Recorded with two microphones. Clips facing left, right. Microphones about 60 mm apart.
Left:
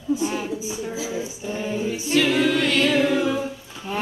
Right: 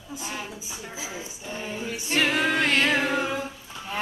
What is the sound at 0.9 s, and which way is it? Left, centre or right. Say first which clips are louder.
Speech: left 5 dB; right.